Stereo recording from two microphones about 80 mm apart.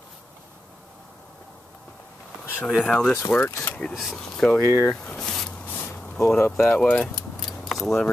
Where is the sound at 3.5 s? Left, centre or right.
Left.